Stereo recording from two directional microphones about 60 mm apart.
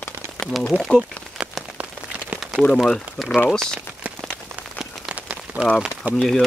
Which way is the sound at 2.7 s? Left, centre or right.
Centre.